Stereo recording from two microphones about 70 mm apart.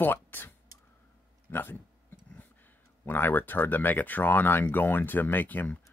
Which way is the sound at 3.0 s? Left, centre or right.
Left.